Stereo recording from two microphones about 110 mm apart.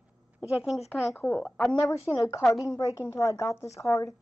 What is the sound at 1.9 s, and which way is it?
A woman's voice, 30° left (ahead or behind).